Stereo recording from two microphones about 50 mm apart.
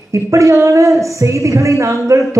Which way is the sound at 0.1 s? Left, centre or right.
Right.